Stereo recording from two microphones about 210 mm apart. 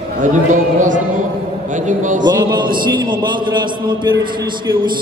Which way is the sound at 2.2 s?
20° right (ahead or behind).